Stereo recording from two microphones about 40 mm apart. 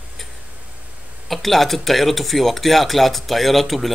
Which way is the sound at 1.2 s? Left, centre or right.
Centre.